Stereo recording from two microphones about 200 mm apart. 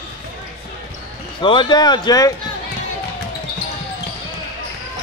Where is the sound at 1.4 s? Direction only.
25° left (ahead or behind).